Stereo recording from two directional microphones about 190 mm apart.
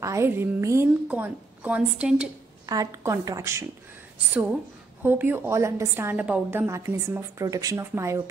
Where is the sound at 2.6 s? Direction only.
15° right (ahead or behind).